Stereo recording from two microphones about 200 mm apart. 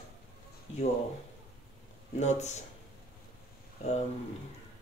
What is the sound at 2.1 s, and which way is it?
Speech, 35° left (ahead or behind).